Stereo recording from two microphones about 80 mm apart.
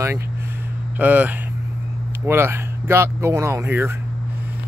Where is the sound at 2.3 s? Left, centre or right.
Right.